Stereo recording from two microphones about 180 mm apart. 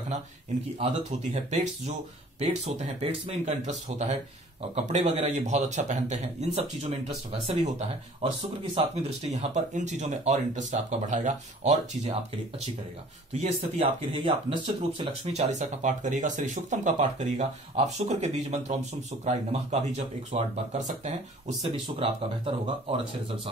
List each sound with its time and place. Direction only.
1.3 s speech: 40° right (ahead or behind)
13.3 s speech: 35° right (ahead or behind)